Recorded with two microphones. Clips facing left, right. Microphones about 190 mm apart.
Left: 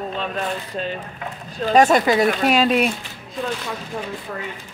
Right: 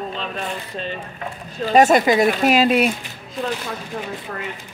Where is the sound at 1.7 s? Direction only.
10° right (ahead or behind).